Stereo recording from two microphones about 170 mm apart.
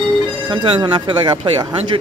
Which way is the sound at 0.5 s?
25° right (ahead or behind).